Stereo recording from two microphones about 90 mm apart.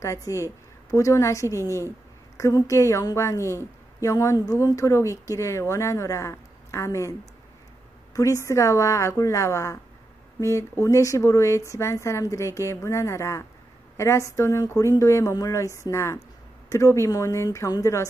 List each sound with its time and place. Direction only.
0.0 s a woman's voice: 35° left (ahead or behind)